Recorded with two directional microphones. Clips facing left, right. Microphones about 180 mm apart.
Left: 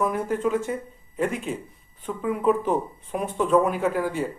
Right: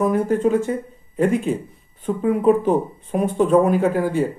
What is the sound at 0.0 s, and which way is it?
Speech, 35° right (ahead or behind).